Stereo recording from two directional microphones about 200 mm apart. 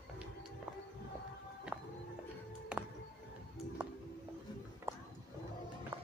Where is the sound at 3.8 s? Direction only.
10° right (ahead or behind).